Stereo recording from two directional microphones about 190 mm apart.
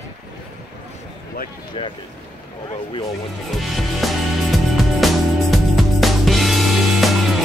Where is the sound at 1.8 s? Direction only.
25° left (ahead or behind).